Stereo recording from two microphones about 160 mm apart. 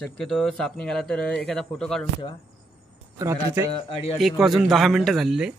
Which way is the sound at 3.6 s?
35° left (ahead or behind).